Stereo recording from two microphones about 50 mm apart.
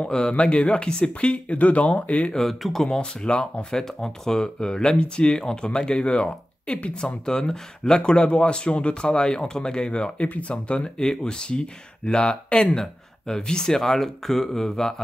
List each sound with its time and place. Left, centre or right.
0.0 s speech: left
2.3 s speech: centre
3.2 s speech: centre
3.7 s speech: centre